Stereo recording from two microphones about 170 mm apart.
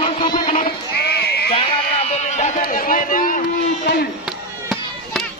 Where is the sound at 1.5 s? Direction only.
40° left (ahead or behind).